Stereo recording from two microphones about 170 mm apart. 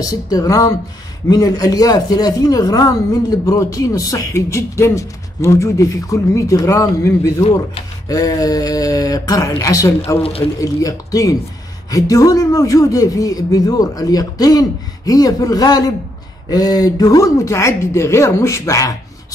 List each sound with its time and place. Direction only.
0.0 s speech: 20° left (ahead or behind)